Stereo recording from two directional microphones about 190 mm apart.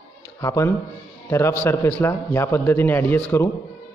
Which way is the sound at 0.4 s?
15° left (ahead or behind).